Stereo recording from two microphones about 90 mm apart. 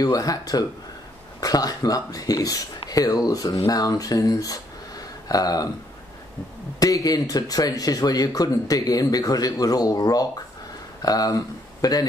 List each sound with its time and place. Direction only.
0.0 s speech: 45° left (ahead or behind)
6.8 s speech: 40° left (ahead or behind)